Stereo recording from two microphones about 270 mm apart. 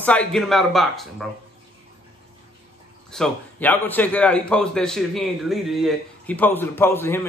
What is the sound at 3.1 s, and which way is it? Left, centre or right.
A man's voice, centre.